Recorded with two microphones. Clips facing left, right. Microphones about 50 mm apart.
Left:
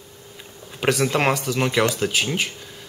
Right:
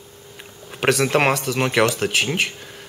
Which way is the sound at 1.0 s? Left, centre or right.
Right.